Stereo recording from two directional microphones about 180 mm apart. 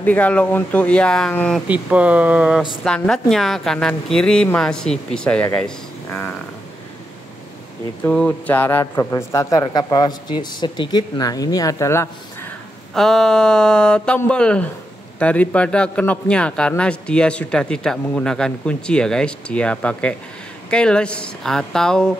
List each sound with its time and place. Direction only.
0.0 s a man's voice: 10° left (ahead or behind)
1.7 s a man's voice: 5° right (ahead or behind)
8.0 s a man's voice: 5° left (ahead or behind)
12.9 s a man's voice: centre (ahead or behind)